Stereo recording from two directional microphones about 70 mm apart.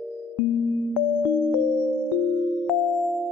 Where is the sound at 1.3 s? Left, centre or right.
Centre.